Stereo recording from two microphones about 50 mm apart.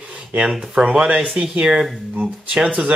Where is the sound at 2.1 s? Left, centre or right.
Right.